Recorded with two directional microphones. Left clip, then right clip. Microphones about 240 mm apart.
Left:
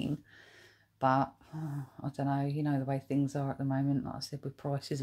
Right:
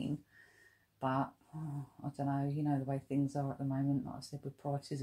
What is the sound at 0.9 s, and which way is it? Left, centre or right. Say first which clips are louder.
Speech: left 7 dB; left.